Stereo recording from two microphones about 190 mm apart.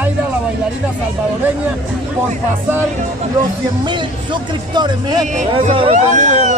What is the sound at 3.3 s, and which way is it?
Speech, 25° right (ahead or behind).